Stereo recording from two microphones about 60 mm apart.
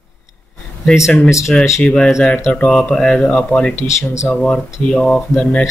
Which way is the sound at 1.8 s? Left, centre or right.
Centre.